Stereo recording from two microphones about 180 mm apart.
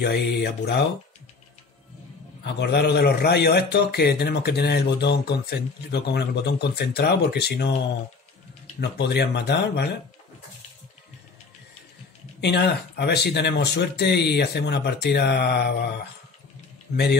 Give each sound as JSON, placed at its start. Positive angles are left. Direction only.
{"t": 0.0, "sound": "a man's voice", "side_deg": 60}
{"t": 2.4, "sound": "a man's voice", "side_deg": 65}
{"t": 8.9, "sound": "speech", "side_deg": 65}
{"t": 12.4, "sound": "speech", "side_deg": 65}
{"t": 16.9, "sound": "speech", "side_deg": 65}